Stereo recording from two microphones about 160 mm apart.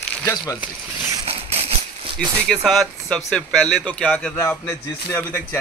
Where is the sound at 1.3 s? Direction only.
40° right (ahead or behind).